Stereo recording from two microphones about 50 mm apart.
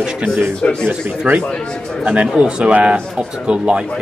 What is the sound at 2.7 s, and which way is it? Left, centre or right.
Speech, right.